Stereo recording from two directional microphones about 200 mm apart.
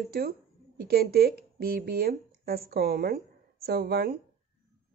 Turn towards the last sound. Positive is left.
turn(degrees=-50)  # may be behind; listen again after turning